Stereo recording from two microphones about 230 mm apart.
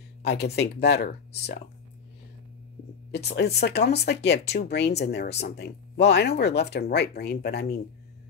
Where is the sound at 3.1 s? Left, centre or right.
Left.